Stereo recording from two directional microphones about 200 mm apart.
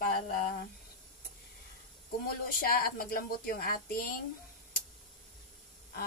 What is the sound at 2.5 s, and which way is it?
A woman's voice, 45° left (ahead or behind).